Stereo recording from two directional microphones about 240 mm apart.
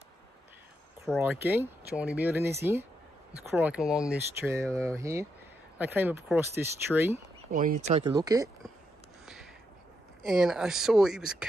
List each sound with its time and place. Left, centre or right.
1.0 s speech: centre
7.5 s speech: right; by 8.5 s centre
10.2 s speech: centre